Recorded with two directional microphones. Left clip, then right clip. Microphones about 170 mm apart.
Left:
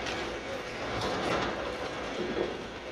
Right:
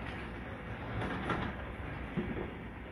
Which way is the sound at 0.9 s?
70° left (ahead or behind).